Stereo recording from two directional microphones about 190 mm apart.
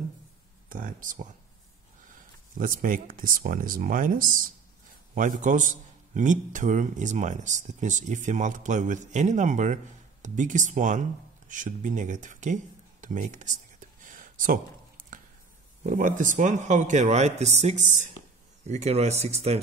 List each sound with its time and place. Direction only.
0.7 s speech: 45° right (ahead or behind)
2.5 s a man's voice: 45° right (ahead or behind)
13.0 s a sound: 40° right (ahead or behind)
15.8 s a man's voice: 45° right (ahead or behind)